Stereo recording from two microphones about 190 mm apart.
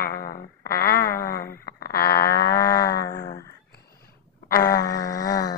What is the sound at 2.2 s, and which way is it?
Insect, 60° left (ahead or behind).